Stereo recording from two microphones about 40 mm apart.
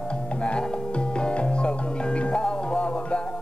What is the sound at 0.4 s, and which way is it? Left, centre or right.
Music, left.